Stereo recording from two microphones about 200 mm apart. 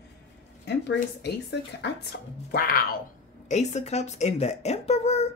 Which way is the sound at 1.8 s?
55° left (ahead or behind).